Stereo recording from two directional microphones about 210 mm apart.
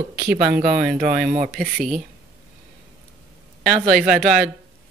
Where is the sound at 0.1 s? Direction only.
45° right (ahead or behind).